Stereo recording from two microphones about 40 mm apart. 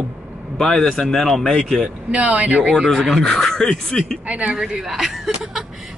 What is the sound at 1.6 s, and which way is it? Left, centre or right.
Speech, centre.